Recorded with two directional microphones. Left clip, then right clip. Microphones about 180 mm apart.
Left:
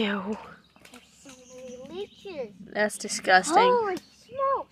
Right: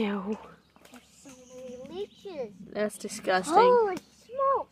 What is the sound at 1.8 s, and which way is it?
A child's voice, centre (ahead or behind).